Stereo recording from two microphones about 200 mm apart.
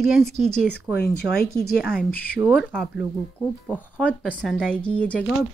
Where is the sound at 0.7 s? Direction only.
55° left (ahead or behind).